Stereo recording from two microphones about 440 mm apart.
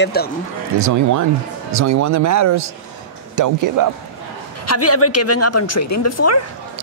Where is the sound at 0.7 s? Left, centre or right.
Right.